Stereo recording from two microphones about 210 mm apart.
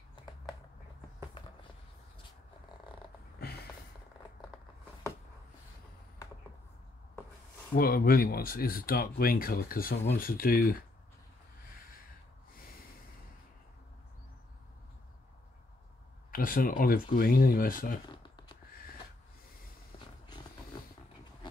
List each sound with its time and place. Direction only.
3.3 s a sound: 50° left (ahead or behind)
7.7 s speech: 45° left (ahead or behind)
16.3 s speech: 40° left (ahead or behind)